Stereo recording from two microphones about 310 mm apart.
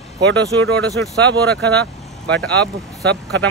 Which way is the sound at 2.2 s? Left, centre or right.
Centre.